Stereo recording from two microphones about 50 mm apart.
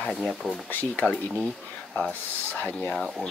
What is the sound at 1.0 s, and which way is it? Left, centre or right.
Speech, left.